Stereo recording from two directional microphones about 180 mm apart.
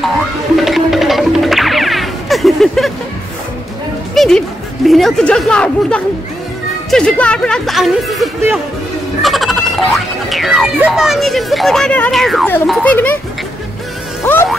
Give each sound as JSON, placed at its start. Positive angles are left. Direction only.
{"t": 0.6, "sound": "music", "side_deg": 0}
{"t": 4.1, "sound": "speech", "side_deg": 0}
{"t": 14.2, "sound": "speech", "side_deg": 10}